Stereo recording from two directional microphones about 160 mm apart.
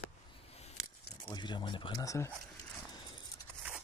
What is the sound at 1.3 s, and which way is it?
Speech, 30° left (ahead or behind).